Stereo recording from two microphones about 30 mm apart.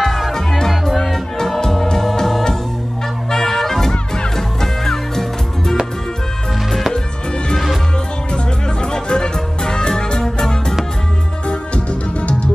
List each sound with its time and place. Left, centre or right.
0.0 s music: centre
0.7 s music: centre
3.3 s music: centre
8.8 s music: left
11.4 s music: left